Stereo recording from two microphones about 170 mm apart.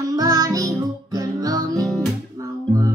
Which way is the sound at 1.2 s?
20° right (ahead or behind).